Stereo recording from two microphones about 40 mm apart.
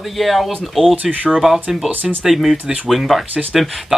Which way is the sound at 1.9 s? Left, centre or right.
Right.